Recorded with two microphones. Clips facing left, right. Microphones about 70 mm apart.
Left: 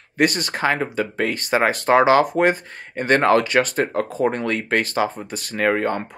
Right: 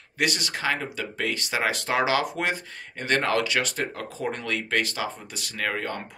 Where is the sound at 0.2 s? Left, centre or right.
Left.